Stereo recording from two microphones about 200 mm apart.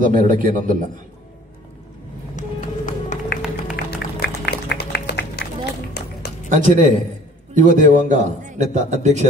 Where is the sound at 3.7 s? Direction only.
55° left (ahead or behind).